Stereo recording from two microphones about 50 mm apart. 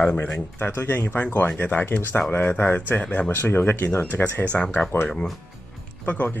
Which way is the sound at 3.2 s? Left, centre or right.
Left.